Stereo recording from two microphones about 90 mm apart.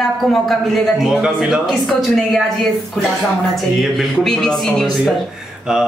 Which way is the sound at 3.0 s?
5° left (ahead or behind).